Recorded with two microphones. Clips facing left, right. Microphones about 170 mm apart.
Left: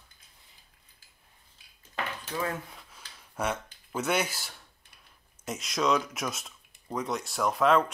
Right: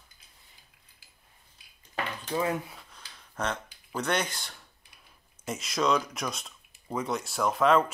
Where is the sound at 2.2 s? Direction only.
15° right (ahead or behind).